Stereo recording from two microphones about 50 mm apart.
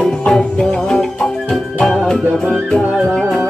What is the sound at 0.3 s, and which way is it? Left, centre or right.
Music, centre.